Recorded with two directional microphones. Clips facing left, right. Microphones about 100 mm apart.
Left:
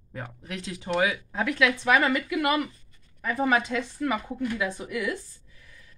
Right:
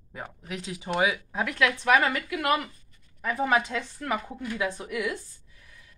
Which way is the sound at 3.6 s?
Centre (ahead or behind).